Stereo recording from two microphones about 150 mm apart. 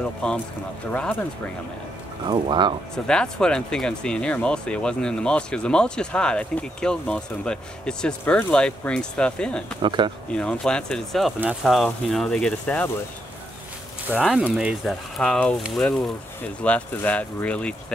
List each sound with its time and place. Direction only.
0.2 s speech: 5° left (ahead or behind)
2.2 s speech: 30° right (ahead or behind)
3.1 s speech: 5° left (ahead or behind)
9.8 s speech: 30° right (ahead or behind)
10.3 s speech: 5° left (ahead or behind)
14.1 s speech: 10° right (ahead or behind)
15.1 s speech: 5° left (ahead or behind)